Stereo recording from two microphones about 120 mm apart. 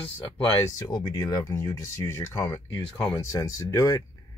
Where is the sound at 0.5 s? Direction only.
30° left (ahead or behind).